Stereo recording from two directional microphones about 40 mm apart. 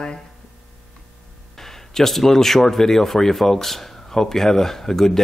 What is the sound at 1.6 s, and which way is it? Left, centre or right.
Speech, centre.